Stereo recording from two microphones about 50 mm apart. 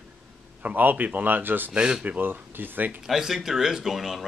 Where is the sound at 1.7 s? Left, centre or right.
Centre.